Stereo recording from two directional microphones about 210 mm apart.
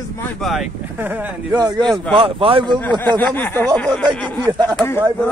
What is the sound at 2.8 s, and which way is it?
A man's voice, 10° left (ahead or behind).